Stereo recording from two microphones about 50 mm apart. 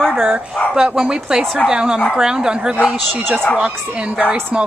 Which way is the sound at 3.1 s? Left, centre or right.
Right.